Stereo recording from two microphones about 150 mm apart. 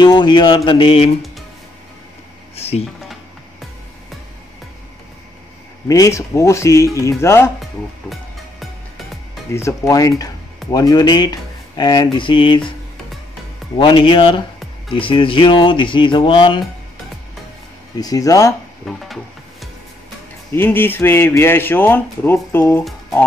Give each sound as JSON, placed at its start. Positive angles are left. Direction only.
{"t": 0.0, "sound": "speech", "side_deg": 30}
{"t": 2.5, "sound": "drawer open or close", "side_deg": 45}
{"t": 5.9, "sound": "speech", "side_deg": 20}
{"t": 8.1, "sound": "music", "side_deg": 0}
{"t": 9.5, "sound": "speech", "side_deg": 20}
{"t": 13.7, "sound": "speech", "side_deg": 35}
{"t": 17.9, "sound": "speech", "side_deg": 25}
{"t": 18.9, "sound": "music", "side_deg": 0}
{"t": 20.5, "sound": "a man's voice", "side_deg": 15}